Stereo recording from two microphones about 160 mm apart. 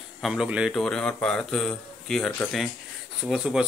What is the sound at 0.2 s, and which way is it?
Speech, 5° right (ahead or behind).